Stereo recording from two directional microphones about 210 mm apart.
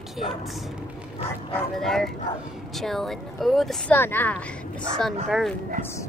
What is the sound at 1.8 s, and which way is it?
A woman's voice, centre (ahead or behind).